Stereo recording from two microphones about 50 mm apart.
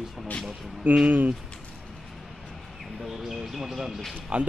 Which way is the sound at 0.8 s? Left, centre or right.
Right.